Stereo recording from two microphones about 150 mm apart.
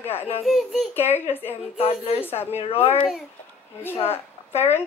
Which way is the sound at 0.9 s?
15° left (ahead or behind).